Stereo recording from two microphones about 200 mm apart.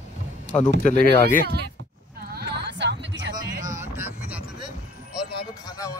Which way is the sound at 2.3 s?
60° right (ahead or behind).